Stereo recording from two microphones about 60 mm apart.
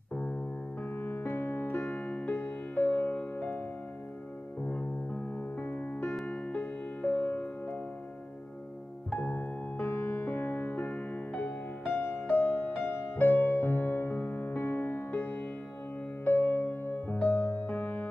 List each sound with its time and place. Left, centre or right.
0.1 s music: centre
0.8 s music: left
4.6 s music: left
9.1 s music: left